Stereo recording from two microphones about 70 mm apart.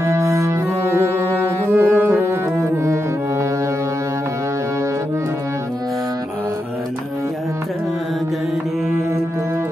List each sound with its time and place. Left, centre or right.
0.0 s music: right